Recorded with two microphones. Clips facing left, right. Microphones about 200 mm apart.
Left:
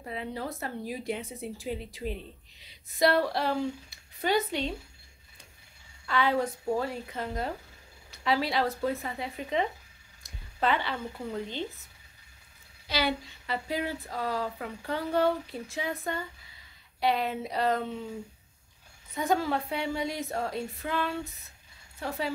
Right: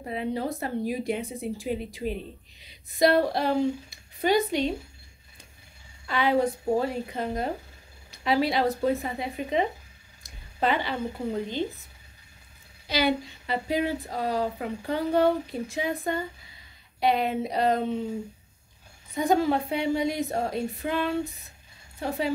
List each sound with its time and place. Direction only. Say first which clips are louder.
0.0 s speech: right 6 dB; 20° right (ahead or behind)
6.0 s a woman's voice: right 4 dB; 15° right (ahead or behind)
10.2 s a sound: right 2 dB; 15° right (ahead or behind)
11.2 s speech: right 5 dB; 15° right (ahead or behind)
12.8 s speech: right 5 dB; 15° right (ahead or behind)
17.0 s speech: right 4 dB; 20° right (ahead or behind)
19.1 s speech: right 5 dB; 15° right (ahead or behind)